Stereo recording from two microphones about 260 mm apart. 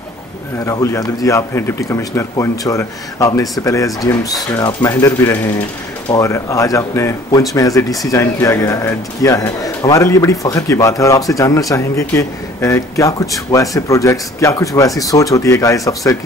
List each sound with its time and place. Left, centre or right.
0.7 s a man's voice: centre